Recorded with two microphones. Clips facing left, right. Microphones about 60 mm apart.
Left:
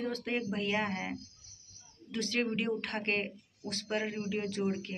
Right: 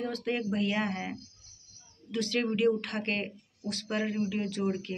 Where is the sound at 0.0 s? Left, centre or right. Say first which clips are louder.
Right 2 dB; left.